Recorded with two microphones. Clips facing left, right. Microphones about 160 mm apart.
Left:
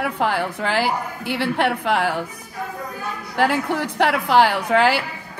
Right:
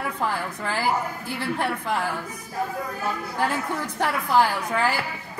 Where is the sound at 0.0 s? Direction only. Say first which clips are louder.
Left 6 dB; 75° left (ahead or behind).